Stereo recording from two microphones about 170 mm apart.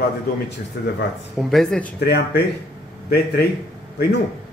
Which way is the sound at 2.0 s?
70° left (ahead or behind).